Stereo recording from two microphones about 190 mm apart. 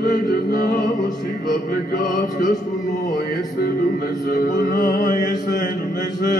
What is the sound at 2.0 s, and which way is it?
Music, 45° left (ahead or behind).